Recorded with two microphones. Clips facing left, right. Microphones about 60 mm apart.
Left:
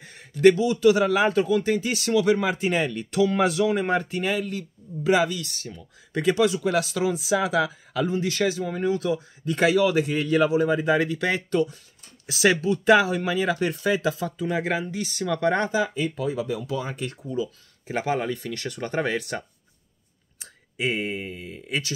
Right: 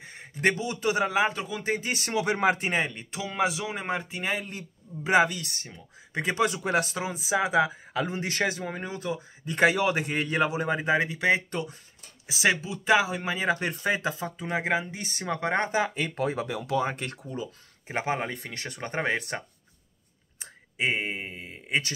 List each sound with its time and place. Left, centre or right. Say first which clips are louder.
0.0 s a man's voice: left 9 dB; right
1.3 s speech: left 12 dB; centre
1.6 s speech: left 5 dB; right
2.8 s speech: left 9 dB; right
4.3 s speech: left 5 dB; right
6.3 s speech: left 1 dB; right; by 13.2 s centre
13.2 s speech: left 3 dB; right
15.7 s speech: left 2 dB; right